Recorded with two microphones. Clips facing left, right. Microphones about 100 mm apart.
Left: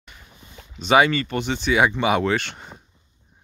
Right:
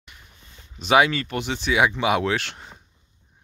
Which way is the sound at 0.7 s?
Centre (ahead or behind).